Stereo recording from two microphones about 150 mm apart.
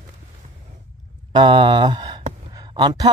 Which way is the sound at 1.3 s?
30° right (ahead or behind).